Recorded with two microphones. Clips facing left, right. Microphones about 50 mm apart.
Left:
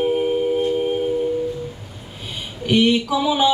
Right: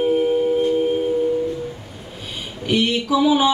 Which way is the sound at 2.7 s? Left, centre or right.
Centre.